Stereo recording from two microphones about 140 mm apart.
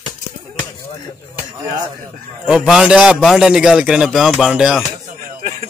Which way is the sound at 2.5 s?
5° right (ahead or behind).